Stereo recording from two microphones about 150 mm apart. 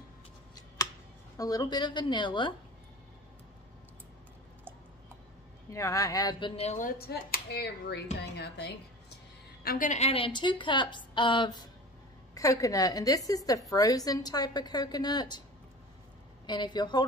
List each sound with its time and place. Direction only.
1.3 s a woman's voice: 25° left (ahead or behind)
5.7 s a woman's voice: 20° left (ahead or behind)
6.5 s a woman's voice: 45° left (ahead or behind)
7.0 s a woman's voice: 90° left; by 15.4 s 30° left (ahead or behind)
16.4 s a woman's voice: 30° left (ahead or behind)